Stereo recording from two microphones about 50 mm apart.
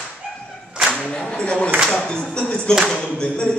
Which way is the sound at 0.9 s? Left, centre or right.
Centre.